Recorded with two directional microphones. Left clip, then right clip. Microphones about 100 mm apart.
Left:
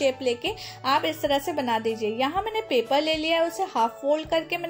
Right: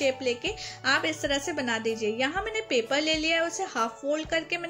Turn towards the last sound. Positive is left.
turn(degrees=40)  # may be behind; listen again after turning